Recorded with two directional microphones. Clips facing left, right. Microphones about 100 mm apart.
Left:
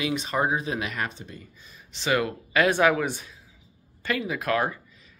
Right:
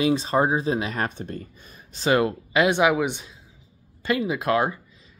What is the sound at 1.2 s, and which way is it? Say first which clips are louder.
Speech: right 9 dB; 55° right (ahead or behind).